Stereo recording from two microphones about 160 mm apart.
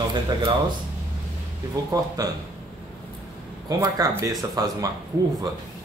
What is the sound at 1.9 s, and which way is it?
Speech, 20° right (ahead or behind).